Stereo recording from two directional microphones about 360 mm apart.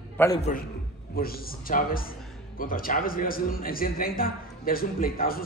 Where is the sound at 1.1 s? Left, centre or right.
Left.